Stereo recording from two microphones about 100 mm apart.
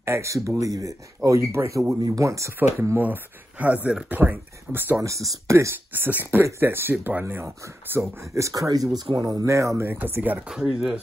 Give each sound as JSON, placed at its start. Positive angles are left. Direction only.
{"t": 0.0, "sound": "speech", "side_deg": -30}
{"t": 3.0, "sound": "speech", "side_deg": -15}
{"t": 5.0, "sound": "speech", "side_deg": -30}
{"t": 10.5, "sound": "speech", "side_deg": -5}